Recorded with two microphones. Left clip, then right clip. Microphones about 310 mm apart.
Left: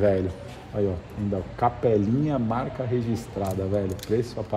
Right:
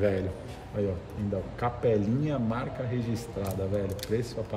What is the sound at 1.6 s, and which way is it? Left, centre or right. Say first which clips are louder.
A man's voice: left 5 dB; centre.